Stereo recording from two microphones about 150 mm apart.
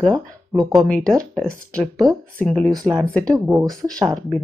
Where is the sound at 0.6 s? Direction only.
Centre (ahead or behind).